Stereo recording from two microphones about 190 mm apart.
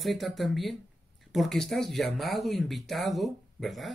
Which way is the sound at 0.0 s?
Centre (ahead or behind).